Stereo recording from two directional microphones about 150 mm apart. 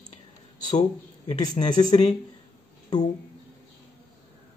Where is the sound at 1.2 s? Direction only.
25° left (ahead or behind).